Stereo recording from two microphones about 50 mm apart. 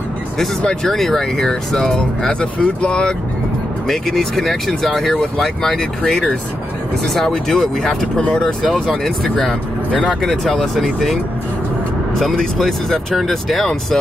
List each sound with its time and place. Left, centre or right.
0.8 s speech: centre
3.8 s speech: centre
10.2 s speech: centre
12.2 s speech: centre